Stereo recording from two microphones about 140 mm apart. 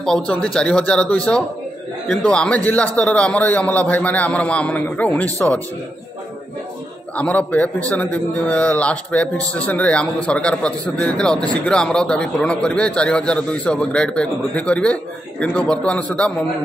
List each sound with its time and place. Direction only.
0.0 s a man's voice: 5° left (ahead or behind)
7.2 s a man's voice: 10° left (ahead or behind)